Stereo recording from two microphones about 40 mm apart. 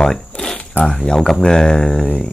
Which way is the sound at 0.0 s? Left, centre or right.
Centre.